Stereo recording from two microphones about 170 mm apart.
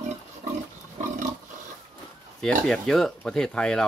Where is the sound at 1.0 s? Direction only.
50° right (ahead or behind).